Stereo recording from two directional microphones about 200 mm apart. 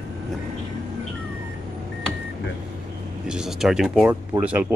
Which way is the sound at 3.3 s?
5° right (ahead or behind).